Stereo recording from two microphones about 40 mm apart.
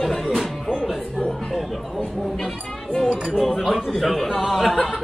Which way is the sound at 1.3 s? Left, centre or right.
Centre.